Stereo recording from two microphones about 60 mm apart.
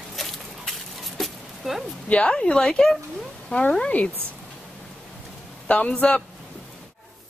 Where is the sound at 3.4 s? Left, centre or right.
Left.